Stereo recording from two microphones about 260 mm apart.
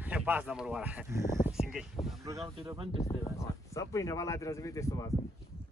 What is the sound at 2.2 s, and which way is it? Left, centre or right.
Speech, centre.